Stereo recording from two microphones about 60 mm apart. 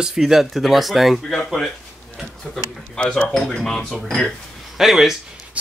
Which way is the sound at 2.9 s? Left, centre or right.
Centre.